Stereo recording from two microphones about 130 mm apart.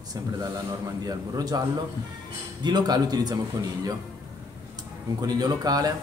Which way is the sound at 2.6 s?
30° right (ahead or behind).